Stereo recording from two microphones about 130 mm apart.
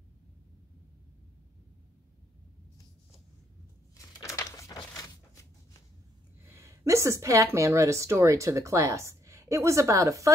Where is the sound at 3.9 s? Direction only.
25° left (ahead or behind).